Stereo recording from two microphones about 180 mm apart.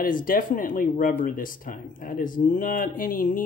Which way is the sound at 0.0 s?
50° left (ahead or behind).